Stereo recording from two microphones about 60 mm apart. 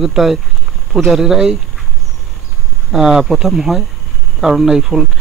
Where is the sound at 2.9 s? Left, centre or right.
Centre.